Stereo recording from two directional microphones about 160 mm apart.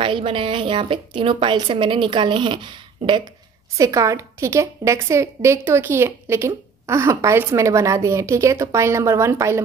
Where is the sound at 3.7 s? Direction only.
20° right (ahead or behind).